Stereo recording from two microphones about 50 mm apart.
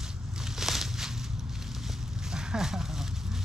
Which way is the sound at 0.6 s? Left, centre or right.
Centre.